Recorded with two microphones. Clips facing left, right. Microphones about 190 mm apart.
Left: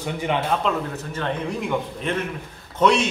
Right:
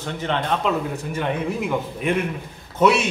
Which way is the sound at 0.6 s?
10° right (ahead or behind).